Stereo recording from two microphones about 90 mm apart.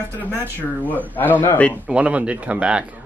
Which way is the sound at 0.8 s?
20° left (ahead or behind).